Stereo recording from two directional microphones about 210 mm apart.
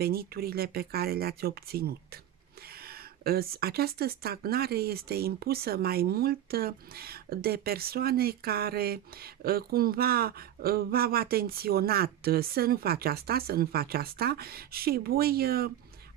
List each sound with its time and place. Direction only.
0.0 s speech: 45° right (ahead or behind)